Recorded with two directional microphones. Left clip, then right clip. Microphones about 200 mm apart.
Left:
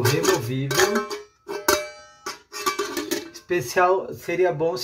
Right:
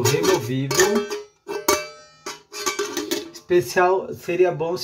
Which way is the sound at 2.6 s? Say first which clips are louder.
Even; 5° right (ahead or behind).